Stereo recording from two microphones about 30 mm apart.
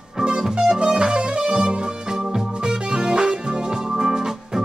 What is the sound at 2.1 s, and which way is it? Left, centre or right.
Music, centre.